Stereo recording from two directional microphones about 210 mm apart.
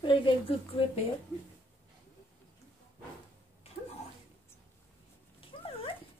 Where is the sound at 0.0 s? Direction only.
25° left (ahead or behind).